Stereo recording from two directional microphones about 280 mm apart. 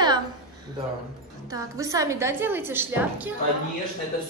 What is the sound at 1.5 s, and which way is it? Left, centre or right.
A woman's voice, centre.